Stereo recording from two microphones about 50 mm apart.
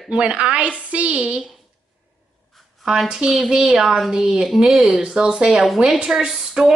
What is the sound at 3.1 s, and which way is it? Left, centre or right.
A woman's voice, centre.